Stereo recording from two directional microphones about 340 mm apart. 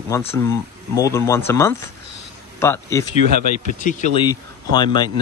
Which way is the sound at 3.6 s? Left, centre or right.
Left.